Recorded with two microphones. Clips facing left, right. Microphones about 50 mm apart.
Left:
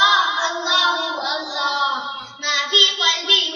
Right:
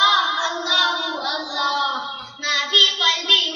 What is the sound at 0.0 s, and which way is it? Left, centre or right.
Child singing, centre.